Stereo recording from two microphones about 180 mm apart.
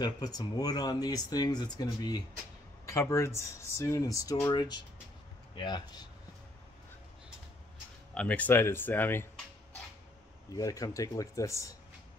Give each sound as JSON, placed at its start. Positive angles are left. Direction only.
{"t": 0.0, "sound": "speech", "side_deg": 20}
{"t": 8.1, "sound": "speech", "side_deg": 5}
{"t": 10.5, "sound": "speech", "side_deg": 20}